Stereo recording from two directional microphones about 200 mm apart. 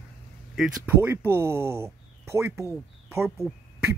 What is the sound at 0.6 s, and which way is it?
Speech, 10° right (ahead or behind).